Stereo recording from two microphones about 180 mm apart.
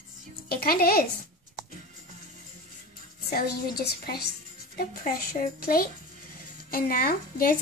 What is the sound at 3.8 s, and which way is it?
A child's voice, 60° left (ahead or behind).